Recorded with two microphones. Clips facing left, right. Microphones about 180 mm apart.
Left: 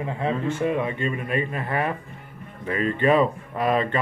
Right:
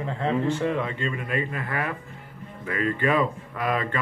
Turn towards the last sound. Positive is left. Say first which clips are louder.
# left 4 dB
turn(degrees=25)  # may be behind; listen again after turning